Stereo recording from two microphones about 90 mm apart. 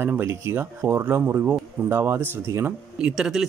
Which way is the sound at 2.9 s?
10° right (ahead or behind).